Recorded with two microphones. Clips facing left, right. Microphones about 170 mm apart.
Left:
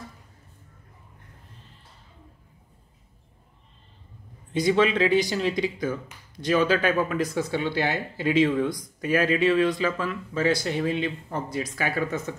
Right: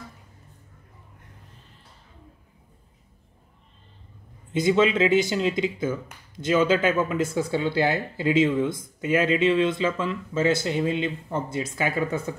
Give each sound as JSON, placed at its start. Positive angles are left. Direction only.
{"t": 4.6, "sound": "speech", "side_deg": -25}